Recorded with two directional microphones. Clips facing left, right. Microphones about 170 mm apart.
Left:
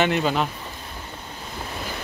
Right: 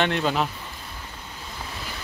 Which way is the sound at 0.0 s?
5° left (ahead or behind).